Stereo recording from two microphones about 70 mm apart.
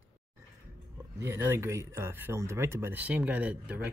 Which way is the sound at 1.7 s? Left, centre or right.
Right.